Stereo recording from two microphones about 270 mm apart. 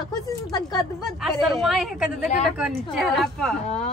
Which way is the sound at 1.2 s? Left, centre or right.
Centre.